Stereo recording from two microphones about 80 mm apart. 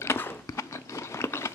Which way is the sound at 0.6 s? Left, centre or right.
Left.